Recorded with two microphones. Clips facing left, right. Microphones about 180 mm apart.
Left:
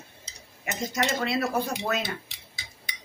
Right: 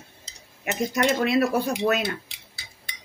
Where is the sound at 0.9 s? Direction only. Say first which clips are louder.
Right 5 dB; 65° right (ahead or behind).